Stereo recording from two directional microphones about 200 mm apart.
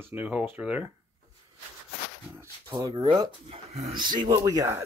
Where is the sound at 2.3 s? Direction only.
10° right (ahead or behind).